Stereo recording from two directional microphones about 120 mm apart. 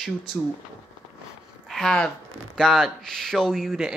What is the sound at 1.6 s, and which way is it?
Speech, 5° left (ahead or behind).